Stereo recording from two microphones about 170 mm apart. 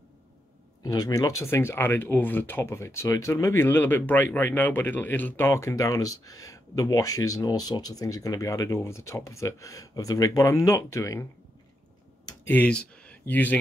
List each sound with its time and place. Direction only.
0.8 s speech: 20° left (ahead or behind)
12.4 s speech: 10° left (ahead or behind)